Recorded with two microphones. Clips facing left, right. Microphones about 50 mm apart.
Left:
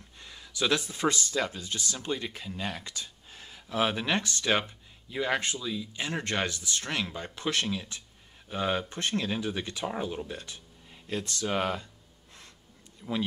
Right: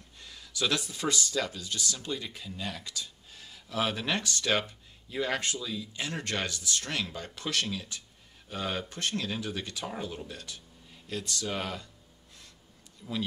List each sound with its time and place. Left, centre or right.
0.2 s speech: left
13.0 s speech: left